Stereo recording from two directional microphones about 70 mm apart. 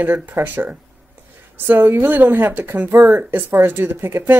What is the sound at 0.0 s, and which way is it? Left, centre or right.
A woman's voice, right.